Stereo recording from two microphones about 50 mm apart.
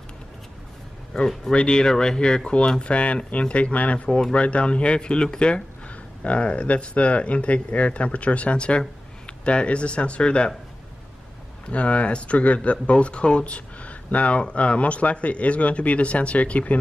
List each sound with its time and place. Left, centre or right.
1.1 s speech: centre
11.7 s speech: left